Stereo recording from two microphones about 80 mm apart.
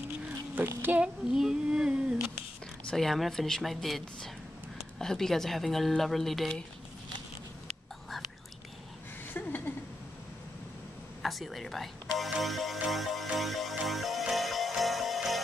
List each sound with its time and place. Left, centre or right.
0.6 s a child's voice: right
1.0 s speech: centre
2.8 s speech: centre
9.7 s a sound: left
11.2 s speech: centre
12.7 s music: centre